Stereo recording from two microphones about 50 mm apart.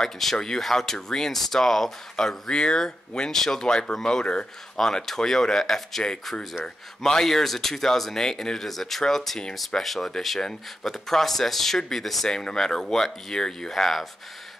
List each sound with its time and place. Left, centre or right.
0.0 s speech: centre